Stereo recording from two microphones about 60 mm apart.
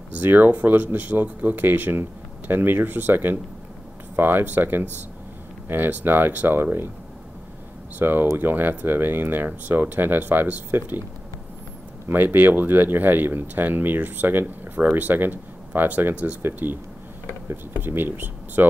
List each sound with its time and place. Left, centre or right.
0.1 s speech: right
8.0 s speech: right
12.1 s speech: right
17.7 s speech: right